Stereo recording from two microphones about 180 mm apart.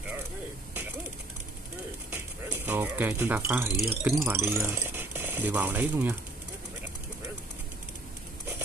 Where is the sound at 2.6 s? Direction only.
10° right (ahead or behind).